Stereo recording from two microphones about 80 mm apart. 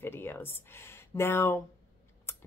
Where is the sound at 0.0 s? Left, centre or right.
Left.